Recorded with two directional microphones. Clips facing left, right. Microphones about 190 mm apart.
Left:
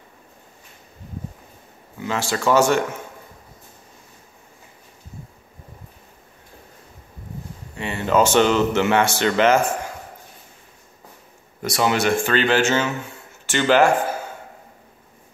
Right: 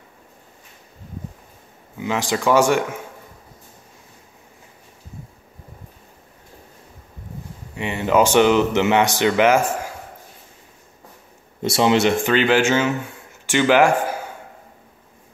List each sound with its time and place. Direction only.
2.0 s speech: 15° right (ahead or behind)
7.7 s speech: 15° right (ahead or behind)
11.6 s speech: 25° right (ahead or behind)